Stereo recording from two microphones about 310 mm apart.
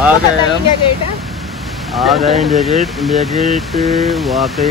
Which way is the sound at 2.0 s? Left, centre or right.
Centre.